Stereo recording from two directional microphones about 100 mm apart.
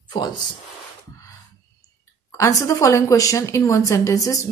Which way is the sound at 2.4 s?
30° left (ahead or behind).